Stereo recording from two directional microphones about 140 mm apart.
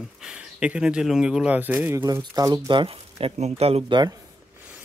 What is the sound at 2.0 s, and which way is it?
Speech, 25° right (ahead or behind).